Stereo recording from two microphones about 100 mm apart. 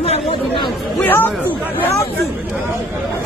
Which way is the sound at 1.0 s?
20° left (ahead or behind).